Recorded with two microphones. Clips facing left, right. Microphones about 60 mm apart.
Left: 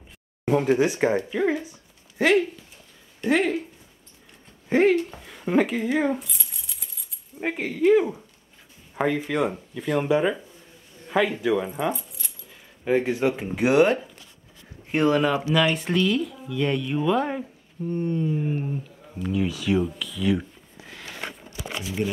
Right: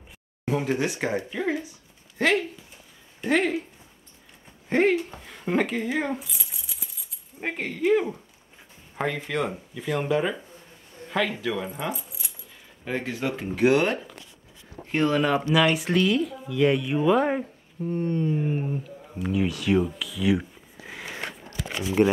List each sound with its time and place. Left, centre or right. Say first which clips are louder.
0.5 s speech: left 5 dB; centre
4.6 s speech: left 2 dB; centre
12.8 s speech: left 7 dB; centre
20.8 s a sound: right 3 dB; centre
22.0 s speech: right 7 dB; right